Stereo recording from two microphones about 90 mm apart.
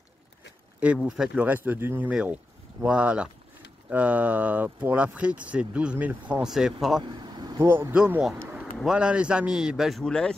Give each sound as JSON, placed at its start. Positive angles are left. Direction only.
{"t": 0.7, "sound": "speech", "side_deg": -10}
{"t": 6.4, "sound": "speech", "side_deg": -5}
{"t": 7.0, "sound": "vehicle", "side_deg": -55}
{"t": 7.5, "sound": "speech", "side_deg": -30}
{"t": 8.8, "sound": "speech", "side_deg": -10}